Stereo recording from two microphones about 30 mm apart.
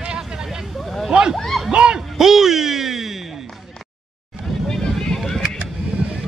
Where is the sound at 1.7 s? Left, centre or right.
Right.